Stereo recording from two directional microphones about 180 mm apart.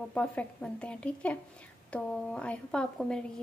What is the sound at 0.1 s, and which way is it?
A woman's voice, 5° left (ahead or behind).